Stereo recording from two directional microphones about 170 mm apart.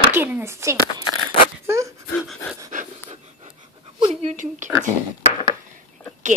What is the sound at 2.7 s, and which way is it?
Pant, 50° right (ahead or behind).